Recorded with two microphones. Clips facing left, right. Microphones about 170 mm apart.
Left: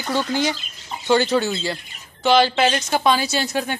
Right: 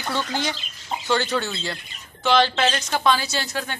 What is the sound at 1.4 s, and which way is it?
Speech, 10° left (ahead or behind).